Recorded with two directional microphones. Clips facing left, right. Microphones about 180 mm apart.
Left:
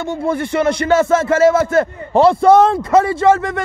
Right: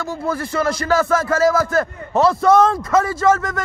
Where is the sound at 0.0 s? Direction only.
25° left (ahead or behind).